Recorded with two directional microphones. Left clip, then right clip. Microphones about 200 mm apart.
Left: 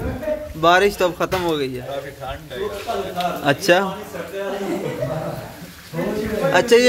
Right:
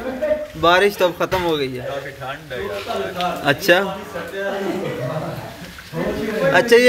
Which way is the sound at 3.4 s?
5° left (ahead or behind).